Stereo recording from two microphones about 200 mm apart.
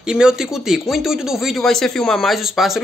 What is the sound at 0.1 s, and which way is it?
Speech, 5° right (ahead or behind).